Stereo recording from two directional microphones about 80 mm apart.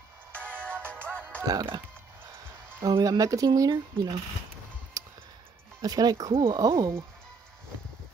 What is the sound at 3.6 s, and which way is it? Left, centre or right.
Speech, right.